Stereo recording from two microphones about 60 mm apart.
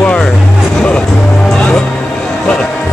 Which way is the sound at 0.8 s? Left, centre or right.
Centre.